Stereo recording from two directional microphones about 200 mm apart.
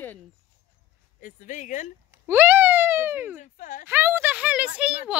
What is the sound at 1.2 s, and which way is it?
Speech, 40° left (ahead or behind).